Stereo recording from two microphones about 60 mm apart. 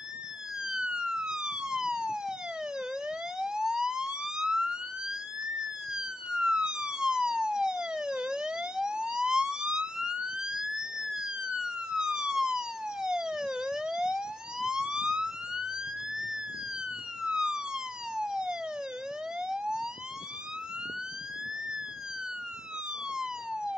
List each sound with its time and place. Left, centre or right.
0.7 s police car: centre
3.1 s emergency vehicle: centre
5.6 s police car: centre
17.2 s police car: centre
19.4 s emergency vehicle: centre
23.1 s police car: centre